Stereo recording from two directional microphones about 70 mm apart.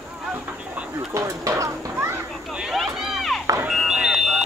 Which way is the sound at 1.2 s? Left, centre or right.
Right.